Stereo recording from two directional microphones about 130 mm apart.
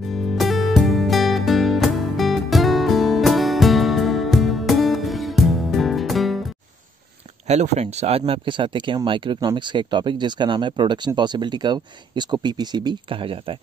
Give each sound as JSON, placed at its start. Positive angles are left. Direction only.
{"t": 0.1, "sound": "music", "side_deg": 0}
{"t": 7.4, "sound": "speech", "side_deg": -60}
{"t": 8.3, "sound": "speech", "side_deg": -40}